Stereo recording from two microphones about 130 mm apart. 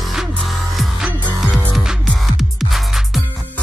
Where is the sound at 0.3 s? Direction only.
Centre (ahead or behind).